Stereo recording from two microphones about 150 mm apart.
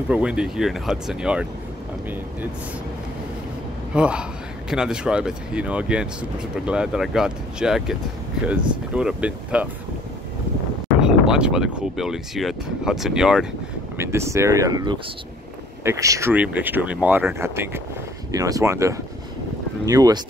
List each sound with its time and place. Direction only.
0.1 s a man's voice: 5° right (ahead or behind)
3.9 s a man's voice: 5° right (ahead or behind)
11.0 s speech: 5° right (ahead or behind)
13.9 s a man's voice: 20° right (ahead or behind)